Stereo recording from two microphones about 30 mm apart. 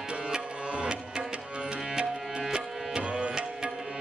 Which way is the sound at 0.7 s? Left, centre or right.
Right.